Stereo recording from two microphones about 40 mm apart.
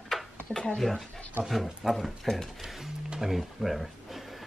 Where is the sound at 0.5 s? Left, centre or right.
Left.